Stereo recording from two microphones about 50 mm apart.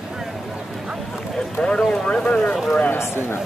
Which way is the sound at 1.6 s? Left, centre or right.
Centre.